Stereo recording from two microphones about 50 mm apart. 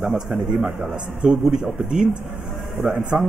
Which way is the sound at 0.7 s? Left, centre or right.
Centre.